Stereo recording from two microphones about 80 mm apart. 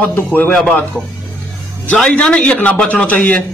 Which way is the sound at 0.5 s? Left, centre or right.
Centre.